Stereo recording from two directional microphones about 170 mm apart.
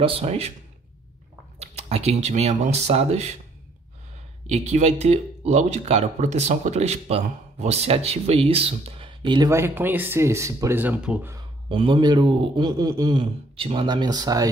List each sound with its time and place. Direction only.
0.0 s speech: 35° right (ahead or behind)
1.6 s speech: 40° right (ahead or behind)
4.5 s speech: 40° right (ahead or behind)
9.5 s speech: 15° right (ahead or behind)
11.3 s a man's voice: 30° right (ahead or behind)